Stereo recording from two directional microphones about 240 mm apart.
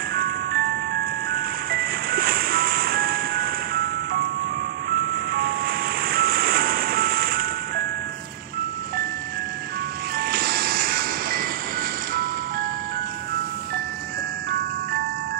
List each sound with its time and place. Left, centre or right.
0.1 s glockenspiel: right
1.3 s ice cream truck: right
4.8 s vehicle: right
10.1 s music: right
12.1 s ice cream truck: right